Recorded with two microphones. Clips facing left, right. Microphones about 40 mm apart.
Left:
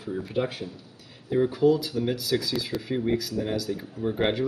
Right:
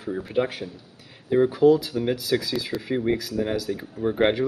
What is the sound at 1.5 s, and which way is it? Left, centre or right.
Speech, centre.